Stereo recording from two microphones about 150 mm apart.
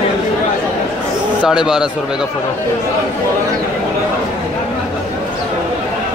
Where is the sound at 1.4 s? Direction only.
5° right (ahead or behind).